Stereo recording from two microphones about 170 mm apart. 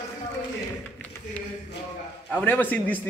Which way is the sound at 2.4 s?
10° left (ahead or behind).